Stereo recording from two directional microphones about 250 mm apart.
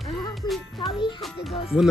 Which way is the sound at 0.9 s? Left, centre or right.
Centre.